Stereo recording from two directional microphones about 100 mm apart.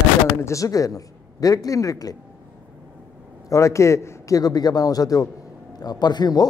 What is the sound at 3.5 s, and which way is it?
A man's voice, 30° left (ahead or behind).